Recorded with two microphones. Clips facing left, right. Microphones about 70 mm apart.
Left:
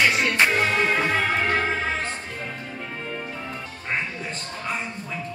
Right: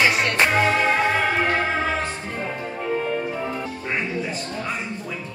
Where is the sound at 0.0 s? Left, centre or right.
Centre.